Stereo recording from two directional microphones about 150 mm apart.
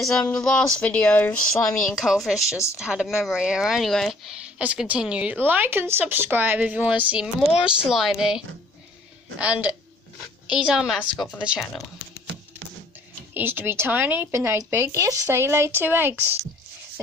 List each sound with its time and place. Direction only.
0.0 s speech: 5° left (ahead or behind)
9.4 s speech: 10° right (ahead or behind)
13.3 s speech: 15° right (ahead or behind)